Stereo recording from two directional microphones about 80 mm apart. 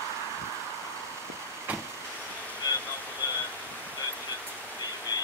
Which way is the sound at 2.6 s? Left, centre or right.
Left.